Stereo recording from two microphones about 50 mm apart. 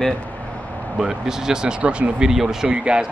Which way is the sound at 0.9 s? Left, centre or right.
Centre.